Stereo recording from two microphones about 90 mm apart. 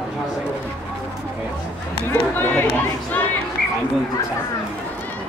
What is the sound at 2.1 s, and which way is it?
Chatter, 25° left (ahead or behind).